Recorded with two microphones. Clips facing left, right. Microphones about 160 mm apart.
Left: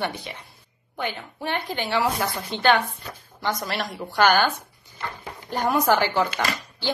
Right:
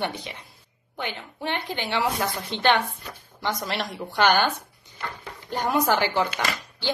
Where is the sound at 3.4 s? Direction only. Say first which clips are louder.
Left 1 dB; 20° right (ahead or behind).